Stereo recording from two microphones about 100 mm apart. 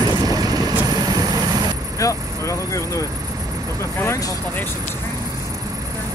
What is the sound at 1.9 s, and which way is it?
Vehicle, 30° left (ahead or behind).